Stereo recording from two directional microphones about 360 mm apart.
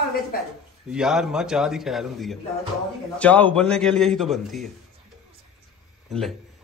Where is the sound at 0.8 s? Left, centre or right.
Centre.